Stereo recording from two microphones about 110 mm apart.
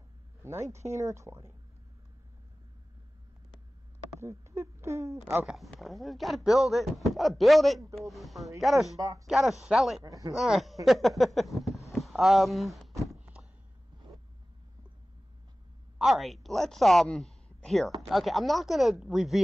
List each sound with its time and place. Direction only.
0.4 s speech: 25° right (ahead or behind)
4.2 s speech: 25° right (ahead or behind)
5.7 s speech: centre (ahead or behind)
8.9 s speech: 30° right (ahead or behind)
9.2 s speech: centre (ahead or behind)
10.0 s speech: 35° right (ahead or behind)
10.3 s speech: centre (ahead or behind)
13.2 s a sound: 10° right (ahead or behind)
16.0 s a woman's voice: centre (ahead or behind)